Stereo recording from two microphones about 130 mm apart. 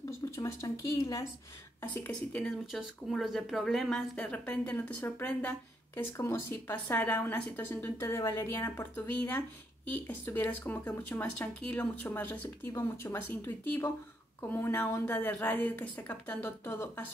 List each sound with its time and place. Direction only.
0.4 s speech: 25° left (ahead or behind)
1.8 s a woman's voice: 10° left (ahead or behind)